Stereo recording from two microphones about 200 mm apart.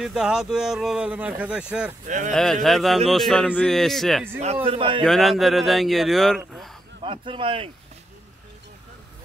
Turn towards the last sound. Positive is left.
turn(degrees=-25)  # may be behind; listen again after turning